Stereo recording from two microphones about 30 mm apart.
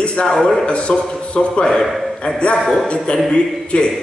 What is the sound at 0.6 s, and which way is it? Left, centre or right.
A man's voice, left.